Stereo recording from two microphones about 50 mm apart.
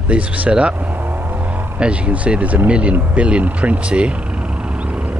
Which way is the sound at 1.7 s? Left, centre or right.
Right.